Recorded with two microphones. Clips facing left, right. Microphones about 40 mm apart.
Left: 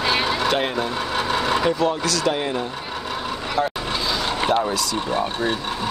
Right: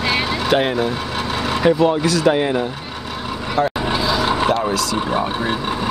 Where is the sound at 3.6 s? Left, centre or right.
Centre.